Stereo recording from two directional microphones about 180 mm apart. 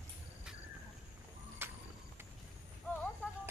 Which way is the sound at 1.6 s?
10° right (ahead or behind).